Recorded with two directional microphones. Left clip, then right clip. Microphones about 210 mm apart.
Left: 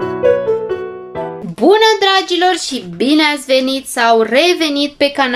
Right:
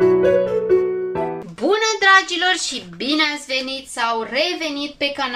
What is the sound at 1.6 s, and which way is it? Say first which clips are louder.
A woman's voice: left 8 dB; 20° left (ahead or behind).